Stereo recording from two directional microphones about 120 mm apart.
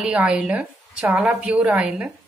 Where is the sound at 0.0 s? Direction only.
10° right (ahead or behind).